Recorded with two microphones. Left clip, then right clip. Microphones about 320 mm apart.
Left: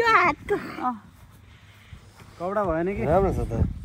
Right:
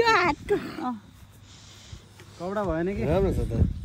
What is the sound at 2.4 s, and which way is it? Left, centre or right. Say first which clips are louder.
Speech: left 3 dB; centre.